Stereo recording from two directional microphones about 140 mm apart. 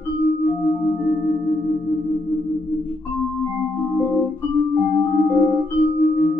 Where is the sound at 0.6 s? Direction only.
40° left (ahead or behind).